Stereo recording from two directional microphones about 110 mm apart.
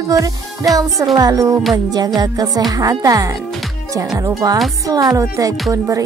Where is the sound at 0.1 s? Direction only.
30° right (ahead or behind).